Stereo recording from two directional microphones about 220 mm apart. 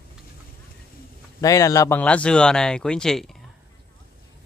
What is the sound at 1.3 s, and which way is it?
Speech, 15° left (ahead or behind).